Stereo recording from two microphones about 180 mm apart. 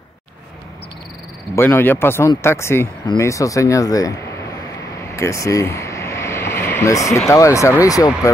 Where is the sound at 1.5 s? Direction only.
10° left (ahead or behind).